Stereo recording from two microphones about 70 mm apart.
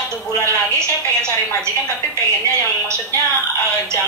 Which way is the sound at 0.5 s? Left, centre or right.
Right.